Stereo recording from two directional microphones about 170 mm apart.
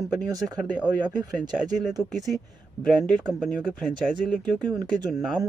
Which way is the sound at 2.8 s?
5° left (ahead or behind).